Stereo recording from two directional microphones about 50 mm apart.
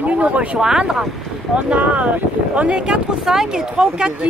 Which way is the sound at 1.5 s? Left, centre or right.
Right.